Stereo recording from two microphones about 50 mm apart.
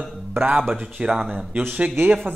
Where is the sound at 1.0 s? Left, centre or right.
Centre.